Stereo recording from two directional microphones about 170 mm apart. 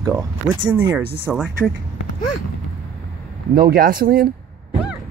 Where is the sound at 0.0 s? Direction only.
20° right (ahead or behind).